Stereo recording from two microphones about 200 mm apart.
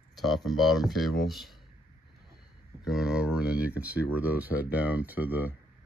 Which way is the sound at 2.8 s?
Centre (ahead or behind).